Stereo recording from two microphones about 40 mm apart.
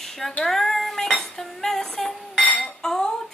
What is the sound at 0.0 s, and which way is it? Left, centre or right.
Female singing, centre.